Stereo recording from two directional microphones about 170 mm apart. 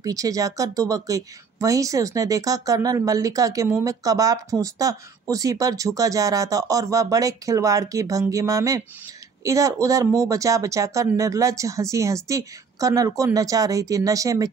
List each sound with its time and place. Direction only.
0.0 s a woman's voice: 20° right (ahead or behind)